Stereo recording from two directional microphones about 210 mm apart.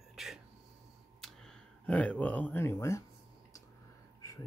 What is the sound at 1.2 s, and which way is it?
Speech, centre (ahead or behind).